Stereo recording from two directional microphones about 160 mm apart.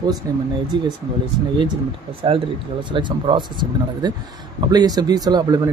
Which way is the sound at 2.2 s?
30° right (ahead or behind).